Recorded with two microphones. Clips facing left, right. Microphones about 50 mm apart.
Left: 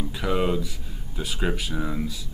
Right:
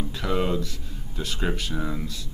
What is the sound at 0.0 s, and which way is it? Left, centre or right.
Speech, centre.